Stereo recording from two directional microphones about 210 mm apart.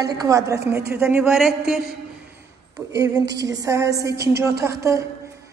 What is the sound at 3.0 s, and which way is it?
A woman's voice, 20° right (ahead or behind).